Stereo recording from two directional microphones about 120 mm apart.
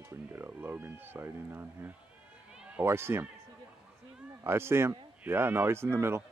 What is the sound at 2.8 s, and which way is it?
Speech, 20° right (ahead or behind).